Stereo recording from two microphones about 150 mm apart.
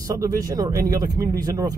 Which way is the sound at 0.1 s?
20° right (ahead or behind).